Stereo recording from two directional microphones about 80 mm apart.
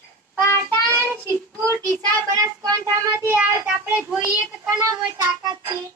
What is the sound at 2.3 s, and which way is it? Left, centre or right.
Child singing, right.